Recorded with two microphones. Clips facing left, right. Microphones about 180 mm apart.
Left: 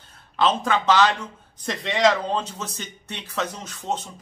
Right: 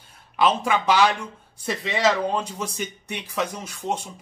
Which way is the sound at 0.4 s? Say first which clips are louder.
Even; 10° right (ahead or behind).